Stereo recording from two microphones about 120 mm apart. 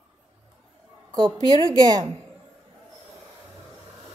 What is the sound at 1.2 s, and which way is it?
Speech, 40° right (ahead or behind).